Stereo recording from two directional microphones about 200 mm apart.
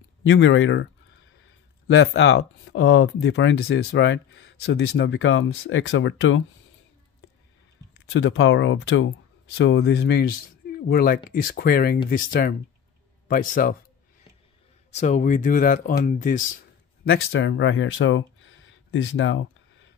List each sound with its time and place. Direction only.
0.2 s speech: 70° left (ahead or behind)
2.0 s speech: 60° left (ahead or behind)
8.1 s speech: 75° left (ahead or behind); by 13.7 s 45° left (ahead or behind)
14.9 s speech: 35° left (ahead or behind)
17.3 s speech: 70° left (ahead or behind)